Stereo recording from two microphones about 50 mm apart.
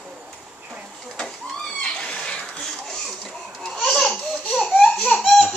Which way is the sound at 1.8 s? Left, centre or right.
Centre.